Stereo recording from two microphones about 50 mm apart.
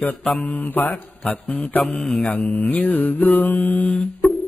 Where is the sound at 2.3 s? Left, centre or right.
Left.